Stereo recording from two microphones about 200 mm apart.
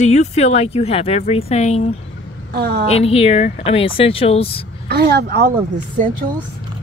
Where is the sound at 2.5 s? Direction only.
55° right (ahead or behind).